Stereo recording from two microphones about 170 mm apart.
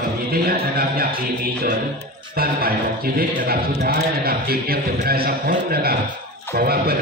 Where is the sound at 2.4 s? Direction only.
60° right (ahead or behind).